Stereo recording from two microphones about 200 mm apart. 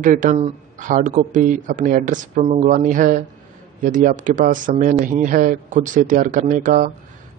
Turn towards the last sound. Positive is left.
turn(degrees=-40)  # may be behind; listen again after turning